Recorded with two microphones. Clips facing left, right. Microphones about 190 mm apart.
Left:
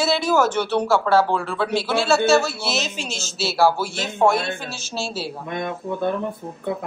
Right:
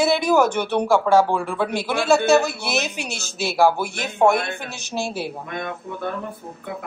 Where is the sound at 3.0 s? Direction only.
60° right (ahead or behind).